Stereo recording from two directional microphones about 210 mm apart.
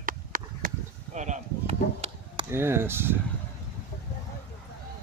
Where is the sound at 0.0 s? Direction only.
40° right (ahead or behind).